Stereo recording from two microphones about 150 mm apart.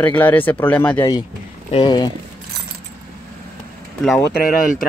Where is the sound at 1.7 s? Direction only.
35° left (ahead or behind).